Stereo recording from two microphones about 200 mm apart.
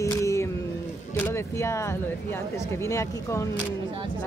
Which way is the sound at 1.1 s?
10° left (ahead or behind).